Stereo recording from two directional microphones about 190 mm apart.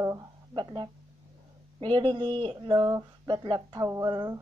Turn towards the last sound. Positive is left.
turn(degrees=-20)  # may be behind; listen again after turning